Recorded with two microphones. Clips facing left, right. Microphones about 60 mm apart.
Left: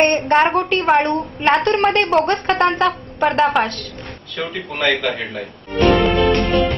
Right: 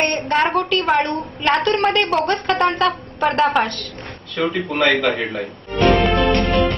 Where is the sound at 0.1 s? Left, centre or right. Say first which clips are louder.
Left 4 dB; left.